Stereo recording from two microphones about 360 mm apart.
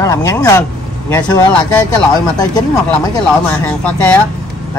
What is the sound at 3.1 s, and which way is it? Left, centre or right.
Speech, centre.